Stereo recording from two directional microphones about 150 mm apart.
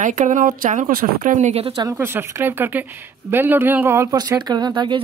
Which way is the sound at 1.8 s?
20° right (ahead or behind).